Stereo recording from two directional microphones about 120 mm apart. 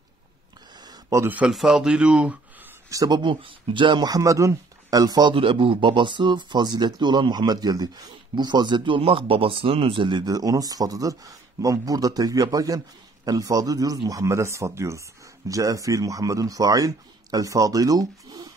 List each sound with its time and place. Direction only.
1.1 s speech: 20° right (ahead or behind)
1.4 s speech: centre (ahead or behind)
2.9 s speech: 30° right (ahead or behind)
5.3 s speech: 50° right (ahead or behind); by 18.5 s 30° right (ahead or behind)